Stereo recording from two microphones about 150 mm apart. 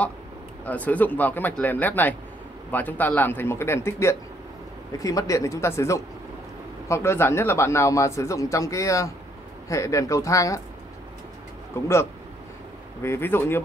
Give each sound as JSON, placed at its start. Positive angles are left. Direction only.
{"t": 0.7, "sound": "speech", "side_deg": 10}
{"t": 11.7, "sound": "speech", "side_deg": 15}
{"t": 13.0, "sound": "speech", "side_deg": 15}